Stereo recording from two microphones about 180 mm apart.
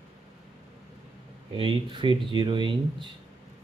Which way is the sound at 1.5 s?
30° right (ahead or behind).